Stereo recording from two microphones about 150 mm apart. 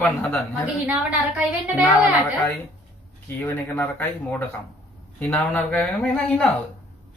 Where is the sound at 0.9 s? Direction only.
10° right (ahead or behind).